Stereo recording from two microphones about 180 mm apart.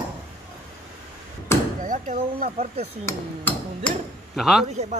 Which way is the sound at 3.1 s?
10° left (ahead or behind).